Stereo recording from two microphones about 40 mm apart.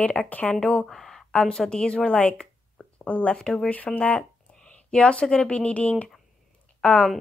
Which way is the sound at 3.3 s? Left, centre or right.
Centre.